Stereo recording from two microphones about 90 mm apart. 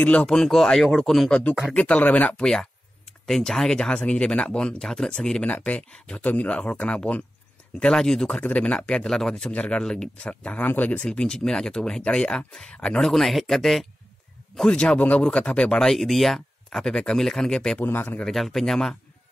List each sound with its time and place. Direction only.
0.0 s speech: 15° left (ahead or behind)
8.4 s speech: 15° left (ahead or behind)
11.1 s speech: 5° left (ahead or behind)
13.1 s speech: centre (ahead or behind)
17.7 s speech: 20° left (ahead or behind)
18.2 s speech: centre (ahead or behind)